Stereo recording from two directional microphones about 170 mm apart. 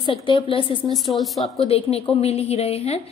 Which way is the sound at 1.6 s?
35° left (ahead or behind).